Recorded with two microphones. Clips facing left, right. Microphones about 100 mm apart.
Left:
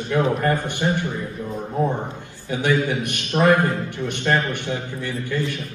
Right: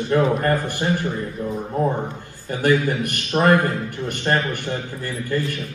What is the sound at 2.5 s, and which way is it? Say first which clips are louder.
A man's voice: right 2 dB; 45° right (ahead or behind).